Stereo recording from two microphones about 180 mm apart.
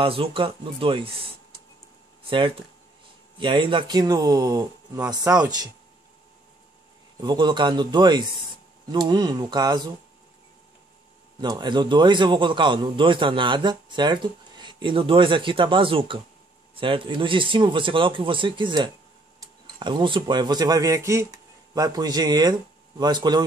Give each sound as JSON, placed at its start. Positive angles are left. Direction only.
{"t": 0.0, "sound": "a man's voice", "side_deg": -30}
{"t": 2.2, "sound": "a man's voice", "side_deg": -30}
{"t": 7.2, "sound": "a man's voice", "side_deg": -25}
{"t": 11.4, "sound": "a man's voice", "side_deg": -25}